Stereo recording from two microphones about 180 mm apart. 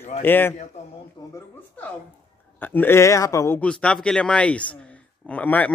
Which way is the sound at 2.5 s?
10° left (ahead or behind).